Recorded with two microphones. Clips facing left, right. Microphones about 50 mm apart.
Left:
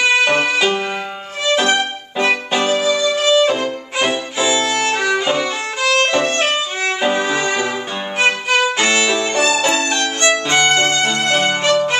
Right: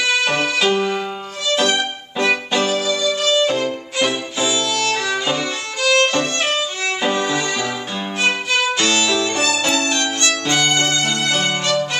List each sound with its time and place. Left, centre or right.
0.2 s music: centre
8.3 s violin: centre
9.6 s music: left